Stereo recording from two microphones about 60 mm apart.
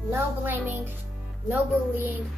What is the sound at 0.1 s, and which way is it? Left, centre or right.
Speech, right.